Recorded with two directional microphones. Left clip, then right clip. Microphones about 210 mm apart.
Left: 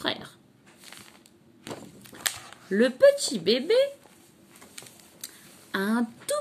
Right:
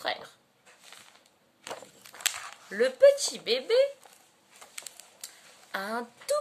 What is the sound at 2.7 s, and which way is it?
Speech, 15° left (ahead or behind).